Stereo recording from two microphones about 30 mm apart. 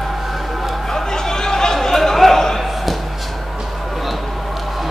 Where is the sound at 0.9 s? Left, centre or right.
Centre.